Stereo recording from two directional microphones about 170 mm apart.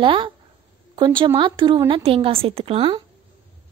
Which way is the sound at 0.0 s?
30° right (ahead or behind).